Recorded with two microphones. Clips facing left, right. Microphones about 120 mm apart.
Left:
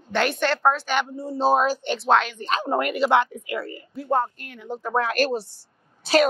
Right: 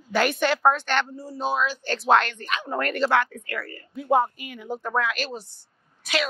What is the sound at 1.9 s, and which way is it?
Speech, centre (ahead or behind).